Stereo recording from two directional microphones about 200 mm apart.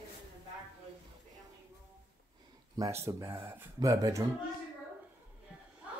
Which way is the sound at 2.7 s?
15° right (ahead or behind).